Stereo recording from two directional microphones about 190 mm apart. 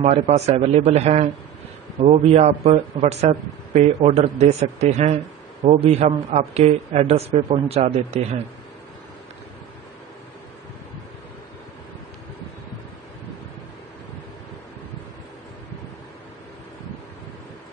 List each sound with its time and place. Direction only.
0.0 s speech: 35° right (ahead or behind)